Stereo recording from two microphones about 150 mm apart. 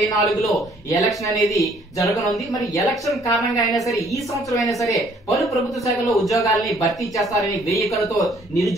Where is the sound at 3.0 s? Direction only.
20° left (ahead or behind).